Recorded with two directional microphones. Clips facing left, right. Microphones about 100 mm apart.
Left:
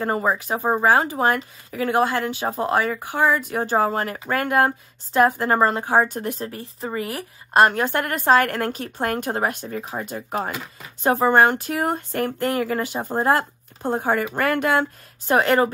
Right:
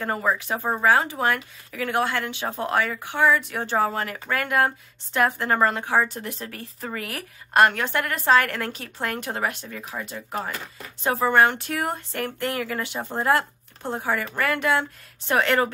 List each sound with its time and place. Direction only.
0.0 s speech: 30° left (ahead or behind)
6.0 s speech: 45° left (ahead or behind)